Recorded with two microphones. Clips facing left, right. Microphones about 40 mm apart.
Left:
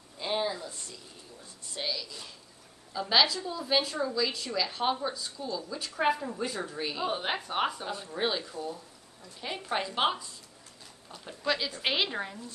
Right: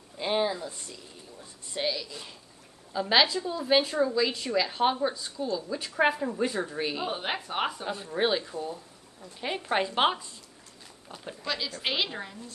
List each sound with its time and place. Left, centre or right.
0.2 s a woman's voice: centre
7.1 s a woman's voice: centre
11.4 s a woman's voice: centre